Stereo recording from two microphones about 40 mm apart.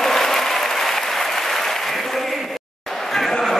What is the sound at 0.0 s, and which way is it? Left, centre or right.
Applause, centre.